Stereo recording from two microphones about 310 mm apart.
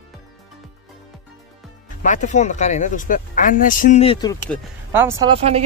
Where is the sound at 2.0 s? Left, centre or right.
Left.